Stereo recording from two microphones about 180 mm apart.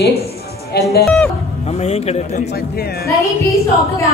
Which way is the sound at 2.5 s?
60° left (ahead or behind).